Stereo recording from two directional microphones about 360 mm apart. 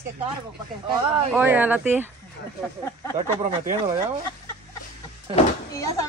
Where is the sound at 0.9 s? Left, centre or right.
Centre.